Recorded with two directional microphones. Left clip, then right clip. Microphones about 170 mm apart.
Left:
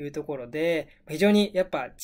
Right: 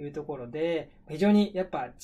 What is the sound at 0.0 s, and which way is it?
Speech, 15° left (ahead or behind).